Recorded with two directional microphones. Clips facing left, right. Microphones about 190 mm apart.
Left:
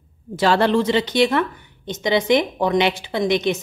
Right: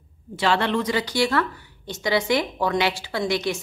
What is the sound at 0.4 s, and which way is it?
A woman's voice, 40° left (ahead or behind).